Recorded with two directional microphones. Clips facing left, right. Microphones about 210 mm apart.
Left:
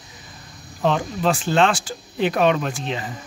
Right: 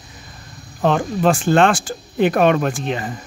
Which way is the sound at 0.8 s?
50° right (ahead or behind).